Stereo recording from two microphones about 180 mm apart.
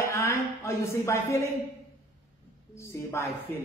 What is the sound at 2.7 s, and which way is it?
Speech, 15° left (ahead or behind).